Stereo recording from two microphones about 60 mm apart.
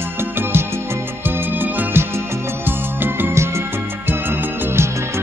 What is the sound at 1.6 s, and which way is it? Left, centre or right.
Music, right.